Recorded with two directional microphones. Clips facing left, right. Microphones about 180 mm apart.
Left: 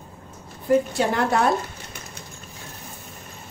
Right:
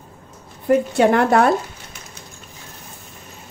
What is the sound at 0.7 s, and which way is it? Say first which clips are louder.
Speech: right 5 dB; 65° right (ahead or behind).